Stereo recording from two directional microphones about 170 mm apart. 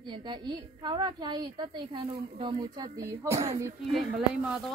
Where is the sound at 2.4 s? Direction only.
30° right (ahead or behind).